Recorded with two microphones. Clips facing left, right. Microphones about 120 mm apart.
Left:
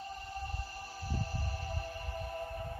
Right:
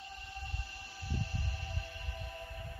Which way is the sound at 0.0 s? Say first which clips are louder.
Left 6 dB; 40° left (ahead or behind).